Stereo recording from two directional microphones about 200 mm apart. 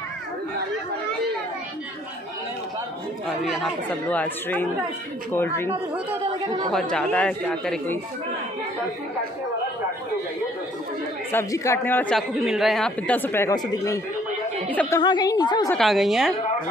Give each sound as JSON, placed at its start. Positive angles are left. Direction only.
{"t": 3.4, "sound": "speech", "side_deg": 5}
{"t": 6.7, "sound": "speech", "side_deg": 5}
{"t": 11.3, "sound": "speech", "side_deg": 15}
{"t": 15.0, "sound": "a woman's voice", "side_deg": 20}
{"t": 15.7, "sound": "speech", "side_deg": 0}